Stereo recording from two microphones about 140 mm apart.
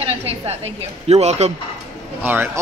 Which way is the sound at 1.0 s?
50° right (ahead or behind).